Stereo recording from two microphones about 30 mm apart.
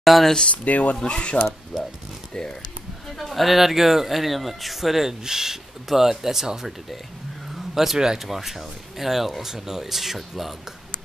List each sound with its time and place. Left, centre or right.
0.1 s speech: centre
0.5 s speech: left
1.0 s speech: left
1.7 s a sound: centre
3.1 s speech: centre
7.7 s speech: centre